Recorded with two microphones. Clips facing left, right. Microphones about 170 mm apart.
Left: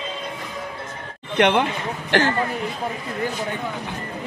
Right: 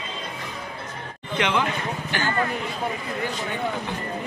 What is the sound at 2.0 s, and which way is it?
Speech, 90° left.